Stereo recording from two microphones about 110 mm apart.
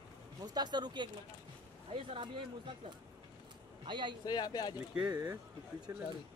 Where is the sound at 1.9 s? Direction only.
55° right (ahead or behind).